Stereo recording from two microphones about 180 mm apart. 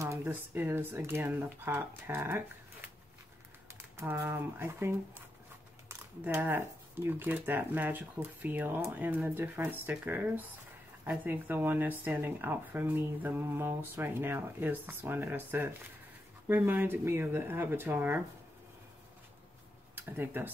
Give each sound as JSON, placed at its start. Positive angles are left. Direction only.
{"t": 0.0, "sound": "speech", "side_deg": -15}
{"t": 3.9, "sound": "speech", "side_deg": -15}
{"t": 20.0, "sound": "speech", "side_deg": -10}